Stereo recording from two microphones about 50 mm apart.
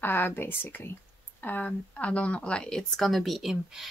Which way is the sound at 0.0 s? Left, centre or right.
Left.